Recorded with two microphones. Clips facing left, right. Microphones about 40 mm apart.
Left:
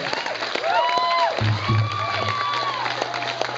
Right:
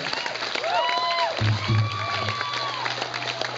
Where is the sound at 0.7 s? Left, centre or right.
Centre.